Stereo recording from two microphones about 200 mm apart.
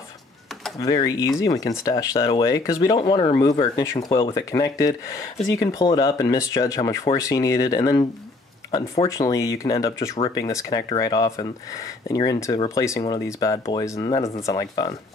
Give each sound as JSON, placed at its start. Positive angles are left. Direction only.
{"t": 0.7, "sound": "speech", "side_deg": 20}
{"t": 9.1, "sound": "speech", "side_deg": 15}